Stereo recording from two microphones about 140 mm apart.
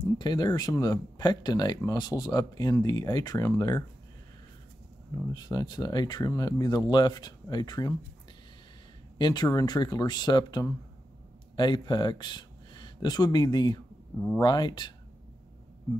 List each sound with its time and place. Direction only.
0.2 s speech: 30° left (ahead or behind)
5.3 s speech: 30° left (ahead or behind)
9.2 s speech: 30° left (ahead or behind)